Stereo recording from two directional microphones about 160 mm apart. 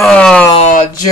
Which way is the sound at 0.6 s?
50° left (ahead or behind).